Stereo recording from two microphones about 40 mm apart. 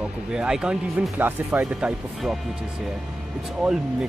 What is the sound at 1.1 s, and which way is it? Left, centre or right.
Speech, right.